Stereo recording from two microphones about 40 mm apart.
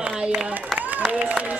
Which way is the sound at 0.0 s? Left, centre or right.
Right.